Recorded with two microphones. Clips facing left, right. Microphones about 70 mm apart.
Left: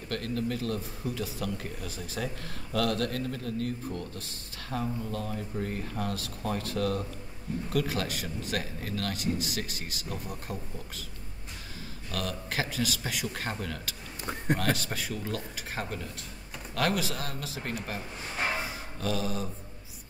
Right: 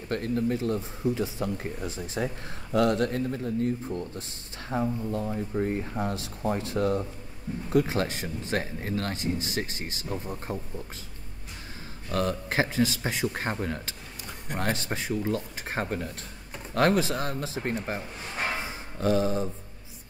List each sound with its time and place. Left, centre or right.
0.1 s speech: right
12.1 s speech: right
18.6 s a sound: right